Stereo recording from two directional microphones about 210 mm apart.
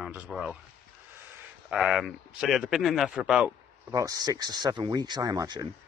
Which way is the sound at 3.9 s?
15° right (ahead or behind).